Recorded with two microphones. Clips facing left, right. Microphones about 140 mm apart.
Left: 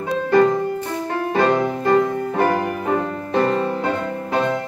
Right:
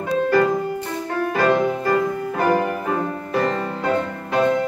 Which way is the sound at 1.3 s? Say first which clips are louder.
Even; 25° left (ahead or behind).